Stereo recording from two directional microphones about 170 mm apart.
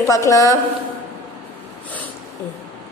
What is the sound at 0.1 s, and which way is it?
Speech, 20° left (ahead or behind).